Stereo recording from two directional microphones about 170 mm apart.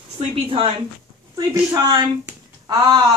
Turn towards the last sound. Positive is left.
turn(degrees=-25)  # may be behind; listen again after turning